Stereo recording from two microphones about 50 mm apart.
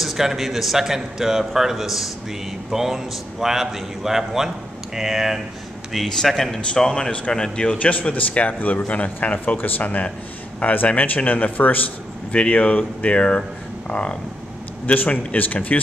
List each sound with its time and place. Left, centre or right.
0.0 s a man's voice: centre
5.9 s speech: centre
6.7 s a man's voice: centre; by 15.8 s left